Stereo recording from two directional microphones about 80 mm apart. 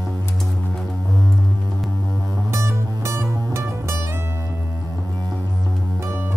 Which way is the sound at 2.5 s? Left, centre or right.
Right.